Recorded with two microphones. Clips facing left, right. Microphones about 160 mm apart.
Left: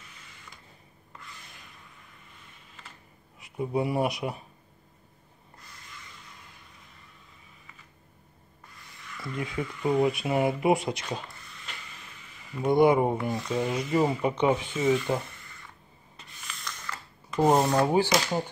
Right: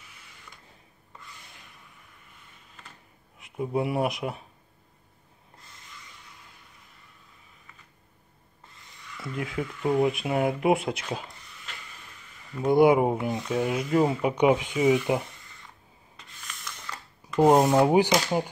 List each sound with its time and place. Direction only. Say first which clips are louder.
3.3 s speech: even; centre (ahead or behind)
9.2 s speech: right 1 dB; centre (ahead or behind)
12.5 s speech: right 2 dB; 5° right (ahead or behind)
16.6 s a sound: left 1 dB; 15° right (ahead or behind)
17.4 s speech: right 3 dB; 10° right (ahead or behind)